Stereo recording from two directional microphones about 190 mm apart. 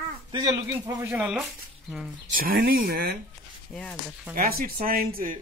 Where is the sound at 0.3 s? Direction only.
20° right (ahead or behind).